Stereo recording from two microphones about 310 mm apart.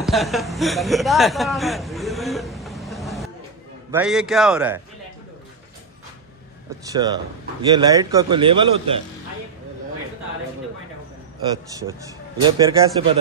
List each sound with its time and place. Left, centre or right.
0.0 s a sound: centre
3.9 s a man's voice: centre
6.9 s a man's voice: centre
11.4 s a man's voice: centre